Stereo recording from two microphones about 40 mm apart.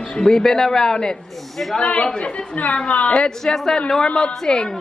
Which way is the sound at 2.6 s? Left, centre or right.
Left.